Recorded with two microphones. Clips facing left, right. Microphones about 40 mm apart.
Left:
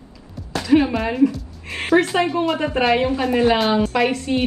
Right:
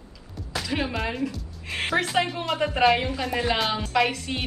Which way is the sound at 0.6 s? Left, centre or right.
Centre.